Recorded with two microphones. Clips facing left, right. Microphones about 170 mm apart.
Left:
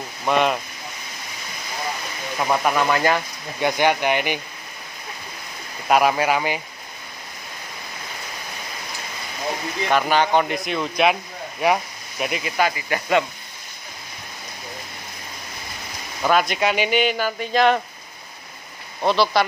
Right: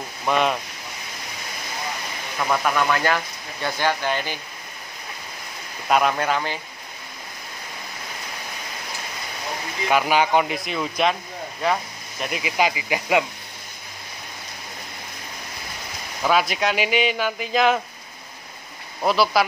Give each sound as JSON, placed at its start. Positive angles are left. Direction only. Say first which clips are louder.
{"t": 0.2, "sound": "speech", "louder": "left 2 dB", "side_deg": 0}
{"t": 2.3, "sound": "speech", "louder": "left 2 dB", "side_deg": 15}
{"t": 5.9, "sound": "speech", "louder": "left 2 dB", "side_deg": 5}
{"t": 9.8, "sound": "speech", "louder": "even", "side_deg": -5}
{"t": 11.6, "sound": "a sound", "louder": "left 4 dB", "side_deg": 15}
{"t": 12.3, "sound": "speech", "louder": "even", "side_deg": -5}
{"t": 16.2, "sound": "speech", "louder": "left 1 dB", "side_deg": 0}
{"t": 19.0, "sound": "speech", "louder": "left 1 dB", "side_deg": -5}